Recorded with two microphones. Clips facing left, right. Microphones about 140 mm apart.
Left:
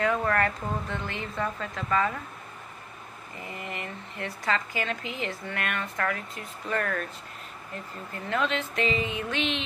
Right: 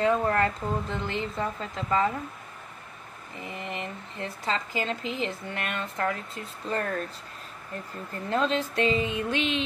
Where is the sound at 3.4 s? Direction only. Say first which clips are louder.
Right 2 dB; 25° right (ahead or behind).